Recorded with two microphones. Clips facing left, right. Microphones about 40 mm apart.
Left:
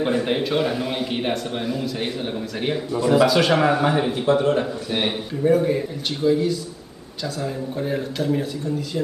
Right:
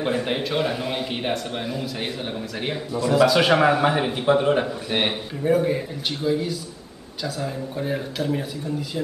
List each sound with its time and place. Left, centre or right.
0.0 s a man's voice: centre
5.4 s a man's voice: centre